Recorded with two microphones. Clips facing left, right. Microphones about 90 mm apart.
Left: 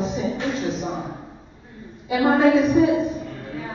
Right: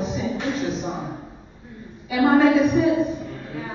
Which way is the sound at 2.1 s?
30° left (ahead or behind).